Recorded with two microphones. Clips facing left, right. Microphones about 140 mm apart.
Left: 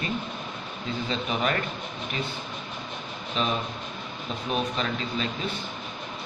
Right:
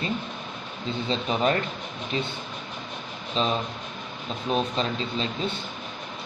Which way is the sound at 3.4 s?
30° right (ahead or behind).